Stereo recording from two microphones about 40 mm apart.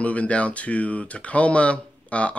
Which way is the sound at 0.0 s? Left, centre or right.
Left.